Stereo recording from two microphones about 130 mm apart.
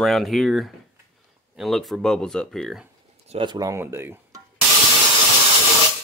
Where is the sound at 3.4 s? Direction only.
30° right (ahead or behind).